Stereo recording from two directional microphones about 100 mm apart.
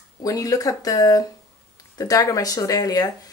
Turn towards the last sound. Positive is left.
turn(degrees=40)  # may be behind; listen again after turning